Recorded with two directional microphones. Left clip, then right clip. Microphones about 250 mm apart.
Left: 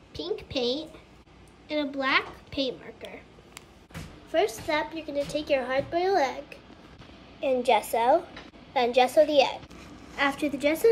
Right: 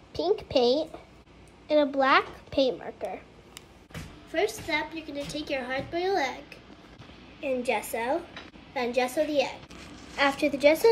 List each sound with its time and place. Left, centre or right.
0.1 s a woman's voice: centre
4.3 s a woman's voice: centre
10.1 s a woman's voice: centre